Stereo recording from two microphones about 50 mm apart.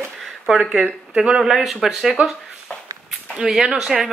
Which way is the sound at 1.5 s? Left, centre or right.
Centre.